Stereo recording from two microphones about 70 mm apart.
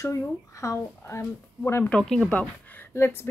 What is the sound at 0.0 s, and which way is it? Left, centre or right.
Speech, left.